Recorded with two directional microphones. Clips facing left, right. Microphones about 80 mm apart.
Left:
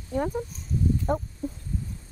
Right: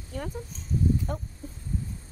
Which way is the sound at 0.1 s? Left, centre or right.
Left.